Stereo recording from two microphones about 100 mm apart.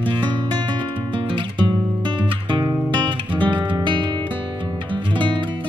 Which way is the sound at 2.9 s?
50° right (ahead or behind).